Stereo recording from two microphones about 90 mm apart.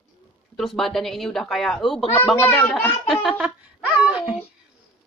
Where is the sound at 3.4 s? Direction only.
15° right (ahead or behind).